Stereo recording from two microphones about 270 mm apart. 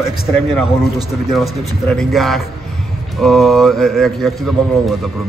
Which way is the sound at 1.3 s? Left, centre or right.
Centre.